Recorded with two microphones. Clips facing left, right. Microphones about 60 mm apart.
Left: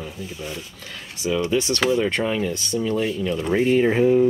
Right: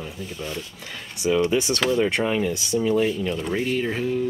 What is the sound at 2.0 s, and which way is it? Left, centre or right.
Speech, centre.